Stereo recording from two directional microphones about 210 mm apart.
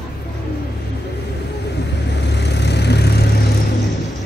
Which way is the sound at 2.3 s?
55° left (ahead or behind).